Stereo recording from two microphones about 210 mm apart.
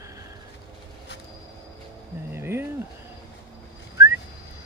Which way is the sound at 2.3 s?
10° right (ahead or behind).